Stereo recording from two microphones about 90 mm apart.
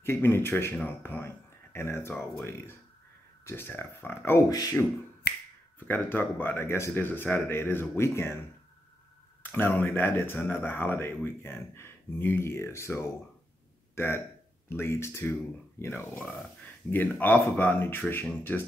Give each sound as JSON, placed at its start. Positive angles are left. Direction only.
{"t": 0.0, "sound": "speech", "side_deg": 25}
{"t": 4.5, "sound": "speech", "side_deg": 45}
{"t": 5.9, "sound": "speech", "side_deg": 25}
{"t": 9.4, "sound": "speech", "side_deg": 25}